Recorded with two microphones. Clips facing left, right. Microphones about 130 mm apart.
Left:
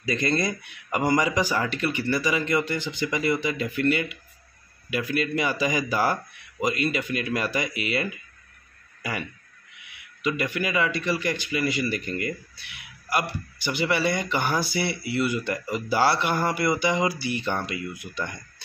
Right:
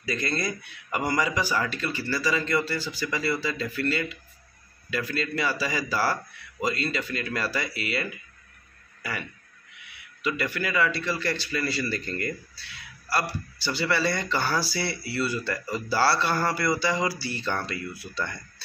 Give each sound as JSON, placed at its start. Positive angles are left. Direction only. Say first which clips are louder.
{"t": 0.0, "sound": "speech", "louder": "left 4 dB", "side_deg": 20}
{"t": 10.2, "sound": "speech", "louder": "left 2 dB", "side_deg": 20}